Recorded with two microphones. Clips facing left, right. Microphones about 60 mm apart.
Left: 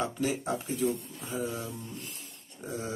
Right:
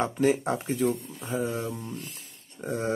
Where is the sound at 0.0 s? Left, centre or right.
Right.